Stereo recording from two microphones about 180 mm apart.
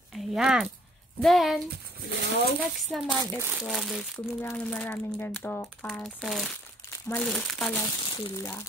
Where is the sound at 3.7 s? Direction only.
Centre (ahead or behind).